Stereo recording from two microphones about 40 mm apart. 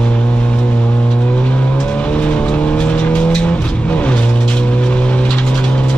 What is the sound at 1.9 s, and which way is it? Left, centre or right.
Vehicle, left.